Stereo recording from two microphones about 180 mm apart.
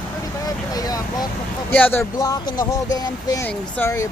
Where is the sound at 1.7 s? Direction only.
10° left (ahead or behind).